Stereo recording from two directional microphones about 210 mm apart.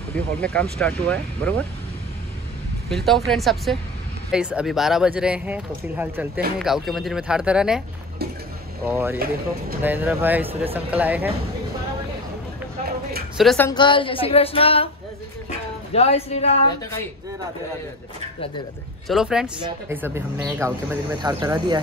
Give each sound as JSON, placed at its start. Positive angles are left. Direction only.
{"t": 0.1, "sound": "speech", "side_deg": 5}
{"t": 2.9, "sound": "speech", "side_deg": 0}
{"t": 8.8, "sound": "speech", "side_deg": -10}
{"t": 13.4, "sound": "speech", "side_deg": 0}
{"t": 13.7, "sound": "speech", "side_deg": 20}
{"t": 15.9, "sound": "speech", "side_deg": 30}
{"t": 19.0, "sound": "speech", "side_deg": -5}